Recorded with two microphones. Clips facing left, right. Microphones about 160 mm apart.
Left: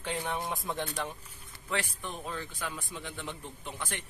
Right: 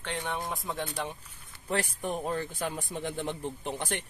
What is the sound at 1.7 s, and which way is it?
Speech, 40° right (ahead or behind).